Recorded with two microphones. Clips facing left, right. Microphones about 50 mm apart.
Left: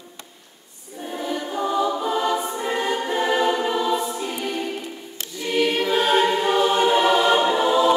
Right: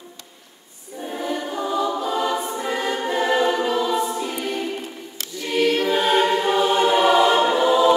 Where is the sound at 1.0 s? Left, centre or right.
Centre.